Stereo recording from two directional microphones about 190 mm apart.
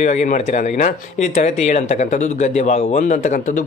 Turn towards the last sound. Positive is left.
turn(degrees=40)  # may be behind; listen again after turning